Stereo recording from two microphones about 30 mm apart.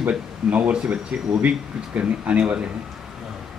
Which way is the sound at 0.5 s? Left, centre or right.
Right.